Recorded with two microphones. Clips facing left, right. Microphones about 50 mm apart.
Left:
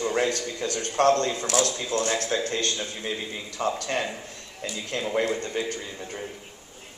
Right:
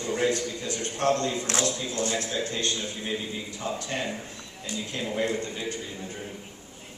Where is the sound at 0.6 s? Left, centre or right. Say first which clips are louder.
Left 6 dB; left.